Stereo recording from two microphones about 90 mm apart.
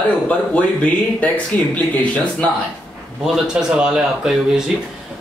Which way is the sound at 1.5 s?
15° left (ahead or behind).